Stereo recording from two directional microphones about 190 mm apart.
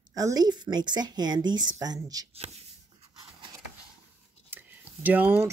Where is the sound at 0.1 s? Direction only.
20° right (ahead or behind).